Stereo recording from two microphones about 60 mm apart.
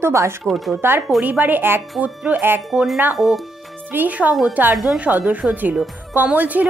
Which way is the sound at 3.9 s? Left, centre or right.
Right.